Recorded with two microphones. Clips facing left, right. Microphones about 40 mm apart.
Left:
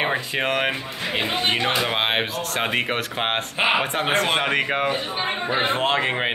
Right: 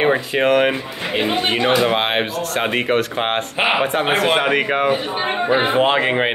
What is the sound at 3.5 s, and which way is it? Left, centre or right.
A man's voice, centre.